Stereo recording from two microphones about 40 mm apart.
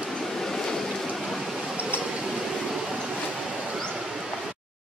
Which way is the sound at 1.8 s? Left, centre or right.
Right.